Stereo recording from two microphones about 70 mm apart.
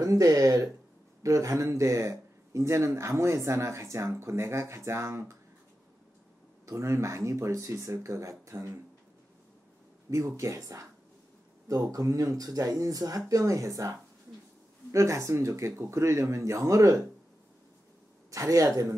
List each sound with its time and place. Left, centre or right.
0.0 s speech: right
6.6 s speech: right
10.0 s speech: right
18.3 s speech: right